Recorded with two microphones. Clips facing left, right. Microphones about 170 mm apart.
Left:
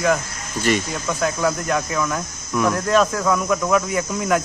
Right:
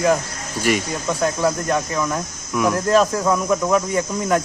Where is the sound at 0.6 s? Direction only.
10° right (ahead or behind).